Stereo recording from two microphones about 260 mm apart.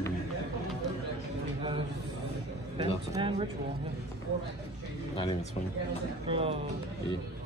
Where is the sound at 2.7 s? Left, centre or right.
Centre.